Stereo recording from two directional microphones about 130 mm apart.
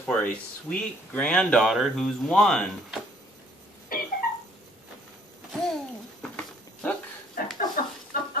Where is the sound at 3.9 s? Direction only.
90° left.